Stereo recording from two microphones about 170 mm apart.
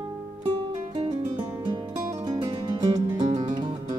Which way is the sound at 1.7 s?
25° right (ahead or behind).